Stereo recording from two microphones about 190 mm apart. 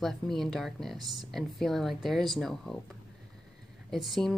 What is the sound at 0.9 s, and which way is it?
Speech, 20° right (ahead or behind).